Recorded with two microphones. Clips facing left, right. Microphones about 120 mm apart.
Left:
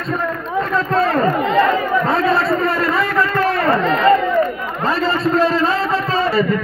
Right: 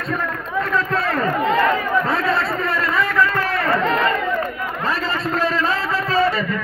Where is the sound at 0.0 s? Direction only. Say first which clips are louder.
Left 3 dB; 25° left (ahead or behind).